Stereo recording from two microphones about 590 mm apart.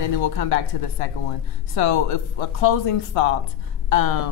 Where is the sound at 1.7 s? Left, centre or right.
Left.